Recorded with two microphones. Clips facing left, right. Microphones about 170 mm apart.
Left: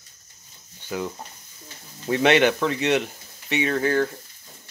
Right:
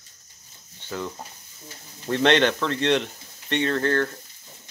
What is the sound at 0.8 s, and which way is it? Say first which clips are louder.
Speech: left 2 dB; 10° left (ahead or behind).